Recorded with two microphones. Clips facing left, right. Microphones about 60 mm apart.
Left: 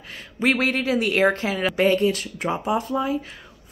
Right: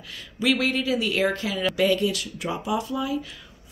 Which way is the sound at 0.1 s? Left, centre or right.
Left.